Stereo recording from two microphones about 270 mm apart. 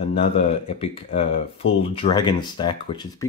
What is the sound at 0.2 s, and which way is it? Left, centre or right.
Speech, left.